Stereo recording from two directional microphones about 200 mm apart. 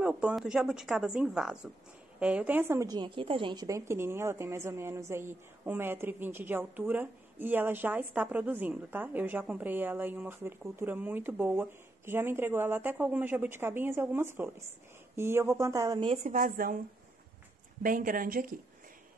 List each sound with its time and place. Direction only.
0.0 s a woman's voice: 5° right (ahead or behind)
16.3 s speech: 45° right (ahead or behind)
17.8 s speech: 45° right (ahead or behind)